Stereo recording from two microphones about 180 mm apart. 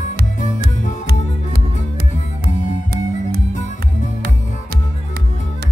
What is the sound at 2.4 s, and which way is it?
Music, 55° right (ahead or behind).